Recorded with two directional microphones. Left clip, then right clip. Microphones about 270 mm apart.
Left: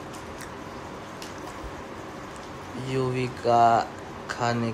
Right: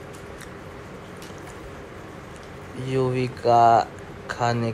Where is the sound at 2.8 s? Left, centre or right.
Centre.